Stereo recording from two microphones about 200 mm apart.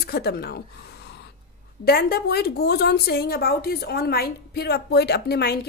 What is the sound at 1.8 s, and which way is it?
A woman's voice, 50° left (ahead or behind).